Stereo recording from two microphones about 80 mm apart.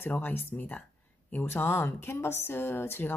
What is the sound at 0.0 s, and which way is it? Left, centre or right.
A woman's voice, left.